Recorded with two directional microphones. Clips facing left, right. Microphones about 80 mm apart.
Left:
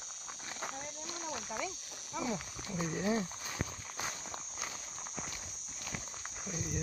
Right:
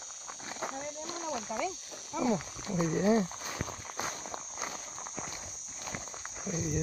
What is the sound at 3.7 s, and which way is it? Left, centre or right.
Walk, right.